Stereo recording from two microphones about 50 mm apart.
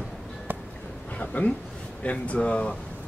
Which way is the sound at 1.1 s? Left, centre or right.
Left.